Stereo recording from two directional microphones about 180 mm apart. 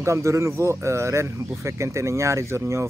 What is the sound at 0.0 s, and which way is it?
A man's voice, 15° right (ahead or behind).